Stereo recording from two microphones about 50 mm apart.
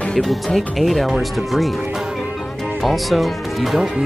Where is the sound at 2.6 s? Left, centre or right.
Centre.